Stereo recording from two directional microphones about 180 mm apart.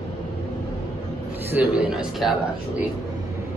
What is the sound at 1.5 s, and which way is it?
Speech, 10° right (ahead or behind).